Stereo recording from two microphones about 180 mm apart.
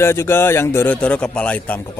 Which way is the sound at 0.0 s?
15° left (ahead or behind).